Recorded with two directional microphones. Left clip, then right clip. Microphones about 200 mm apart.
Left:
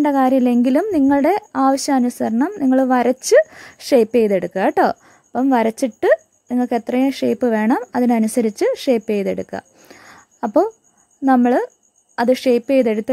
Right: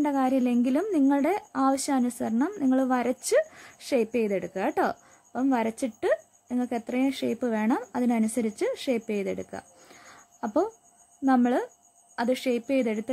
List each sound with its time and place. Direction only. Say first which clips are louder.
0.0 s a woman's voice: left 10 dB; 35° left (ahead or behind)